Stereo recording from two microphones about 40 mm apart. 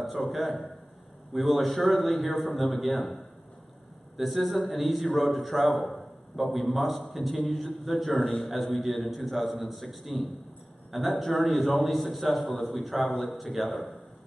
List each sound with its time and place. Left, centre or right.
0.3 s a man's voice: centre
4.2 s a man's voice: centre
8.2 s a man's voice: left
8.7 s a man's voice: centre